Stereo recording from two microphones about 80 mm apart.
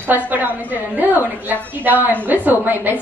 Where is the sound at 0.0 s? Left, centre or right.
Right.